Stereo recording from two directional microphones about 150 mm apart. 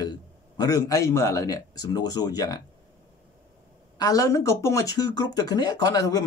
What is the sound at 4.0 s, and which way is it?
A man's voice, 20° left (ahead or behind).